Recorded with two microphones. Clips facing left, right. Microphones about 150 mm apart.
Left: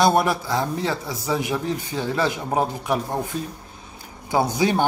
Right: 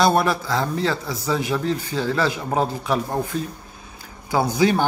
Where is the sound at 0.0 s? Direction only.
15° left (ahead or behind).